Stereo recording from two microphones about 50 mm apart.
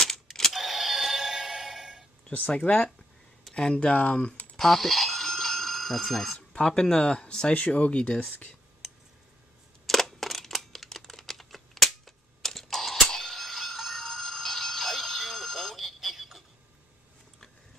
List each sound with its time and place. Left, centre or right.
0.0 s music: centre
2.2 s speech: left
4.6 s bicycle bell: centre
6.3 s speech: centre
8.8 s a sound: centre
9.8 s computer keyboard: centre